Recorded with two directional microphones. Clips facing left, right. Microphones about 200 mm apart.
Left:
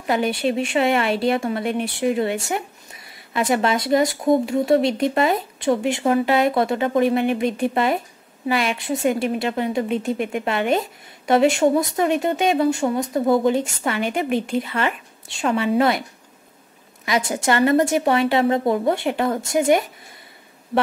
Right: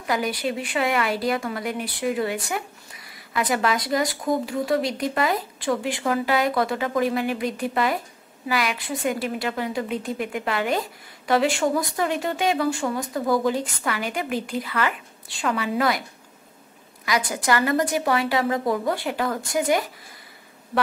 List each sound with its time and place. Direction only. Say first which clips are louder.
0.0 s a woman's voice: left 4 dB; 25° left (ahead or behind)
17.0 s a woman's voice: left 3 dB; 25° left (ahead or behind)